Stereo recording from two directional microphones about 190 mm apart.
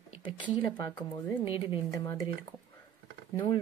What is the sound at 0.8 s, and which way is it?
Speech, 20° left (ahead or behind).